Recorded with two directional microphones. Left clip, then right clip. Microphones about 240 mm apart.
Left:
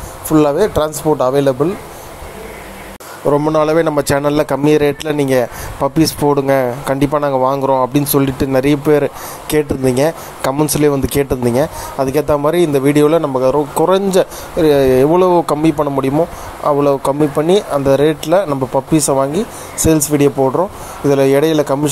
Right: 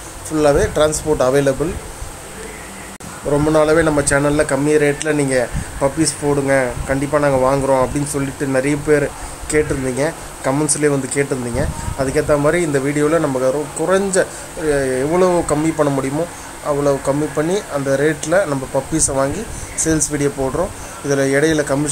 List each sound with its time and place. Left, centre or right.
0.3 s speech: centre
3.5 s speech: left